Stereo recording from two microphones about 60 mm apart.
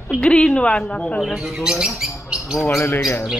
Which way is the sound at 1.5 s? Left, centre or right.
Centre.